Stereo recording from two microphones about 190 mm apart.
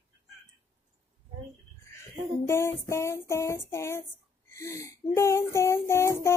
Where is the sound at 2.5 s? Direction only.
15° left (ahead or behind).